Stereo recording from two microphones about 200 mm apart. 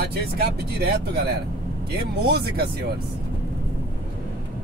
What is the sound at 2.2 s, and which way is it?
Speech, 55° right (ahead or behind).